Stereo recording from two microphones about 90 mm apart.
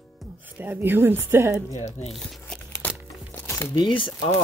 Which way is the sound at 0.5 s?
20° right (ahead or behind).